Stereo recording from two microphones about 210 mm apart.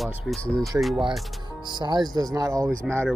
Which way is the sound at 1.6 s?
20° right (ahead or behind).